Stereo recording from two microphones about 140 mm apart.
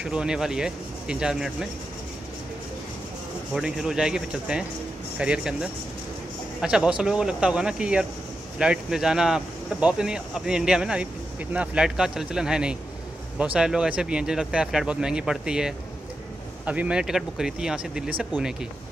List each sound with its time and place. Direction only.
0.0 s speech: 5° right (ahead or behind)
3.5 s speech: 5° right (ahead or behind)